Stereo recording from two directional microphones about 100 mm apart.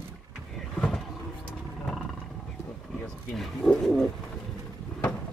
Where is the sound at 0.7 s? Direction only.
10° left (ahead or behind).